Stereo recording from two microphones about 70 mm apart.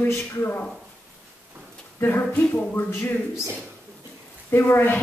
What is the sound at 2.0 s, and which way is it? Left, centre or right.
Speech, left.